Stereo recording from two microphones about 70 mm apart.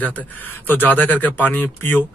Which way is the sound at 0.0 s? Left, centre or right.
Left.